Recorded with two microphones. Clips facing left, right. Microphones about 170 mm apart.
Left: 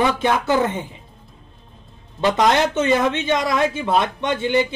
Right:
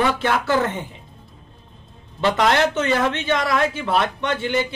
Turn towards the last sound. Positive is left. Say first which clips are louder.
# left 3 dB
turn(degrees=15)  # may be behind; listen again after turning